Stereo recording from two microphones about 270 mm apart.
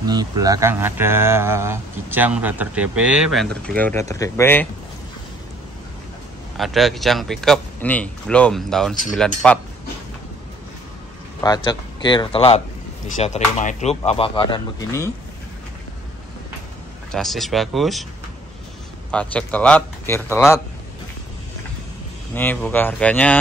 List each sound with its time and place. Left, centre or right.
0.0 s speech: centre
6.5 s a man's voice: centre
11.4 s speech: centre
17.1 s a man's voice: centre
19.0 s a man's voice: centre
22.3 s speech: centre